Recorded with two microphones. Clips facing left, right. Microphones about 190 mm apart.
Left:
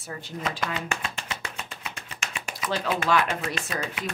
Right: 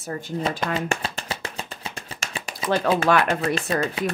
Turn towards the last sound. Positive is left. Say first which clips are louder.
# right 8 dB
turn(degrees=-30)  # may be behind; listen again after turning